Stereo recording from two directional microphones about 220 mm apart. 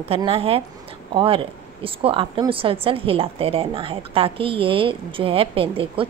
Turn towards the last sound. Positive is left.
turn(degrees=-25)  # may be behind; listen again after turning